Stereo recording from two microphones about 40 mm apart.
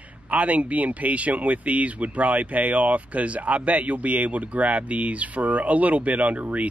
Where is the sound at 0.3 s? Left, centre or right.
Right.